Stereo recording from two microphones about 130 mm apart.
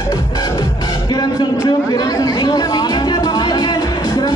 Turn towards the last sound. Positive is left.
turn(degrees=30)  # may be behind; listen again after turning